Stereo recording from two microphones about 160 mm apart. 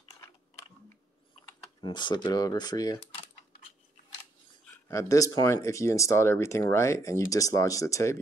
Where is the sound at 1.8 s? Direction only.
30° left (ahead or behind).